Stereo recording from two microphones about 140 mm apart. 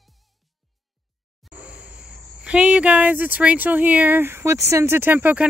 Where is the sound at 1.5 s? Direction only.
10° right (ahead or behind).